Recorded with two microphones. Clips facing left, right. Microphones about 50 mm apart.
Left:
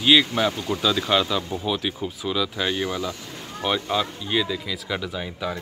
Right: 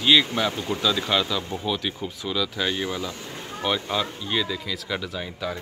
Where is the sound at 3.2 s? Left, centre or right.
Right.